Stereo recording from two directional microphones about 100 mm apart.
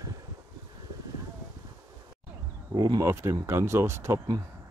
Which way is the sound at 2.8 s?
45° right (ahead or behind).